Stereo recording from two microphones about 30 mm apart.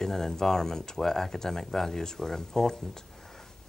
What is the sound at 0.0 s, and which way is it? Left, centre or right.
Speech, centre.